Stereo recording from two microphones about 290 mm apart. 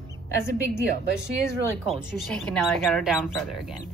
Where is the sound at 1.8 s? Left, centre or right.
Centre.